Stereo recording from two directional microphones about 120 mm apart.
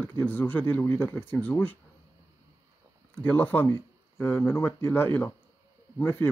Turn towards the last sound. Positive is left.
turn(degrees=20)  # may be behind; listen again after turning